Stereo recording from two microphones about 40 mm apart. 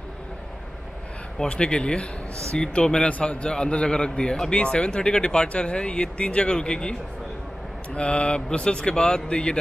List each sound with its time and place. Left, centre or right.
1.5 s speech: left
3.1 s a man's voice: left
3.4 s speech: left